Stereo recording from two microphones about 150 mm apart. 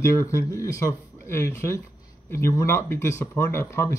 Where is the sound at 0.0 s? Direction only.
20° left (ahead or behind).